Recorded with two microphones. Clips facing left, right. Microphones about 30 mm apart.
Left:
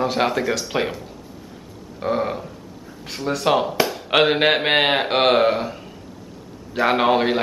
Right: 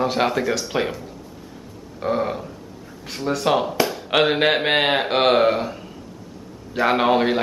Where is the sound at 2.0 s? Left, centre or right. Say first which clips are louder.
Even; centre.